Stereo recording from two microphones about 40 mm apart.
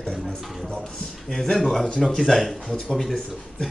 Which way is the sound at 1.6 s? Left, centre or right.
Centre.